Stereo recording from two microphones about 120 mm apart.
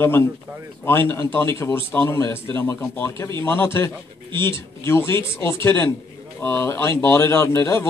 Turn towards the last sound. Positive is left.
turn(degrees=20)  # may be behind; listen again after turning